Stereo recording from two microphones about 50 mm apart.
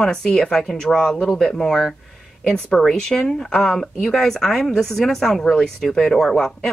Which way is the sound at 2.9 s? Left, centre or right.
Centre.